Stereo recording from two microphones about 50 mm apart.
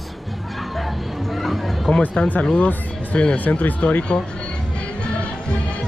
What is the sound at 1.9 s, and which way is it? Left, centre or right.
Speech, centre.